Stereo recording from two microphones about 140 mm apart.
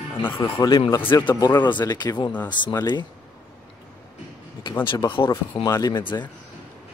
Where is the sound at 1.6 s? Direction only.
35° left (ahead or behind).